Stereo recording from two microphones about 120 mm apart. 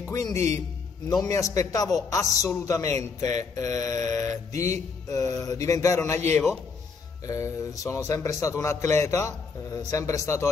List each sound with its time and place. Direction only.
0.1 s a man's voice: 30° left (ahead or behind)